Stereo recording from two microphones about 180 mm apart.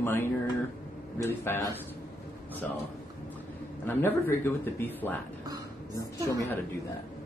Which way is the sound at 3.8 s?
10° left (ahead or behind).